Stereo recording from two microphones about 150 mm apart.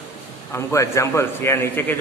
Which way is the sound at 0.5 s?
20° left (ahead or behind).